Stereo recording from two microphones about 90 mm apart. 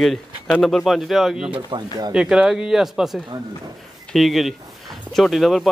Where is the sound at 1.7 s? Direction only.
60° right (ahead or behind).